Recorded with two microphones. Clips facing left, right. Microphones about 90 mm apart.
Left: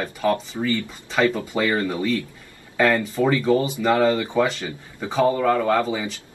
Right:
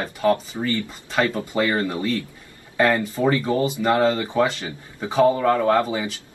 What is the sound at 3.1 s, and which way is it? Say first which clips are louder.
Speech: even; 15° right (ahead or behind).